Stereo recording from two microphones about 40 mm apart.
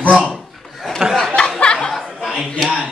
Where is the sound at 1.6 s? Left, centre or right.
Left.